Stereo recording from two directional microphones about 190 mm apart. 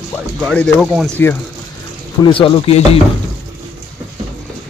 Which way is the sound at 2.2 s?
25° left (ahead or behind).